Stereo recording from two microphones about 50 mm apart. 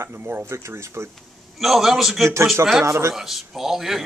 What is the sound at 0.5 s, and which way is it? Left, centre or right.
Speech, right.